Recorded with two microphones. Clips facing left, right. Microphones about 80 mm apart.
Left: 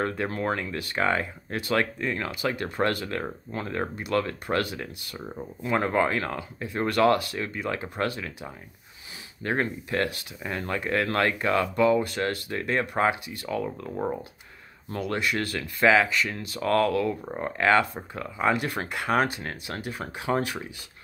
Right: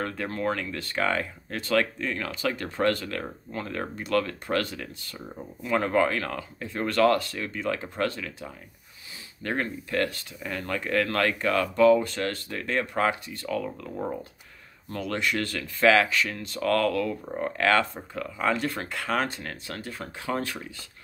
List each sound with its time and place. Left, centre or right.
0.0 s speech: left
2.3 s speech: centre
3.1 s speech: left
5.7 s speech: left
11.4 s speech: centre